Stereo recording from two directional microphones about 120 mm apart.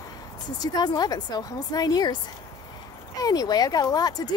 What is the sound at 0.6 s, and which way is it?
Speech, 35° left (ahead or behind).